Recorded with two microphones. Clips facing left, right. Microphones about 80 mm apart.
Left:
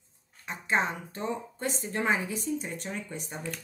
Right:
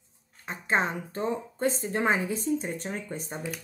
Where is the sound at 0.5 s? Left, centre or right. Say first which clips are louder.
Right 1 dB; right.